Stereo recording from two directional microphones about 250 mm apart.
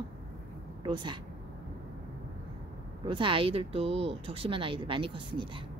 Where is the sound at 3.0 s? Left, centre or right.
Centre.